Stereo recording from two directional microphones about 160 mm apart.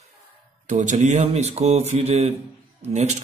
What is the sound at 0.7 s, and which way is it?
Speech, 45° right (ahead or behind).